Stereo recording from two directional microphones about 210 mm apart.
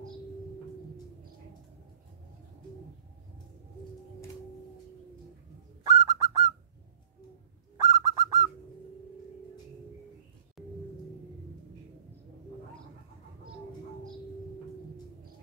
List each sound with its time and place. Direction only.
5.9 s bird: 20° right (ahead or behind)
7.7 s bird: 15° right (ahead or behind)